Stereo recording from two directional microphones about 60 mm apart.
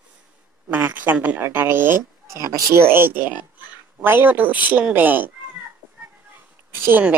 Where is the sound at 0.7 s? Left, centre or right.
Right.